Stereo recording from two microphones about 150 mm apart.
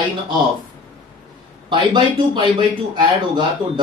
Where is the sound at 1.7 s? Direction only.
30° right (ahead or behind).